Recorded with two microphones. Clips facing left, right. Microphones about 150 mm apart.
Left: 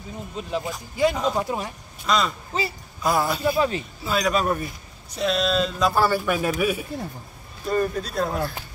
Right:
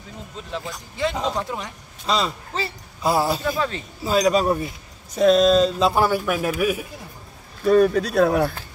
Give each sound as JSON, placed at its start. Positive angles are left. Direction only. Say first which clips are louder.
{"t": 0.5, "sound": "speech", "louder": "left 3 dB", "side_deg": 10}
{"t": 2.0, "sound": "speech", "louder": "even", "side_deg": -30}
{"t": 3.4, "sound": "speech", "louder": "left 3 dB", "side_deg": 10}
{"t": 4.0, "sound": "speech", "louder": "right 5 dB", "side_deg": -35}
{"t": 5.1, "sound": "speech", "louder": "right 8 dB", "side_deg": -45}
{"t": 6.0, "sound": "speech", "louder": "right 1 dB", "side_deg": -10}
{"t": 7.6, "sound": "speech", "louder": "right 8 dB", "side_deg": -75}